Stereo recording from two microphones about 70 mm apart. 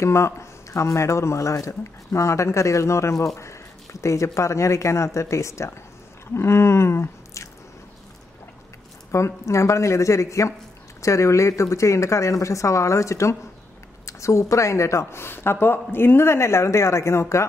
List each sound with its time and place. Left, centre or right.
0.0 s a man's voice: left
6.3 s squish: left
9.1 s a man's voice: left